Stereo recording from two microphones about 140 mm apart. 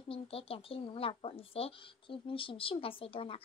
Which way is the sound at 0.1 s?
40° left (ahead or behind).